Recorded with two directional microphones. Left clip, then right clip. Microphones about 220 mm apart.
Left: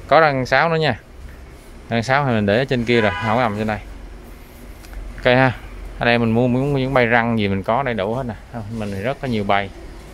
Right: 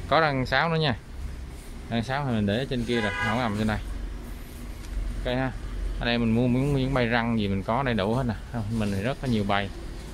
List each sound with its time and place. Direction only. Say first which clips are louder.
0.1 s speech: left 9 dB; 15° left (ahead or behind)
5.2 s speech: left 14 dB; 30° left (ahead or behind)